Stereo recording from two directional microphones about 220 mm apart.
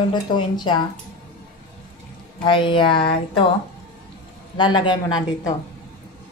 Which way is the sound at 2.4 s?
20° left (ahead or behind).